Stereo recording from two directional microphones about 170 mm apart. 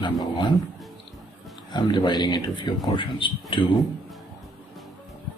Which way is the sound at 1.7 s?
25° left (ahead or behind).